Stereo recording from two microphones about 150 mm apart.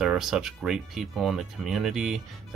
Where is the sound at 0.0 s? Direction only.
5° right (ahead or behind).